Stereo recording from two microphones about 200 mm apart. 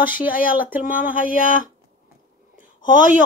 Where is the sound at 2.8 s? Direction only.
40° left (ahead or behind).